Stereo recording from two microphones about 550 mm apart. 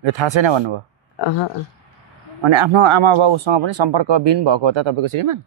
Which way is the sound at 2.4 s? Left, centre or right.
Right.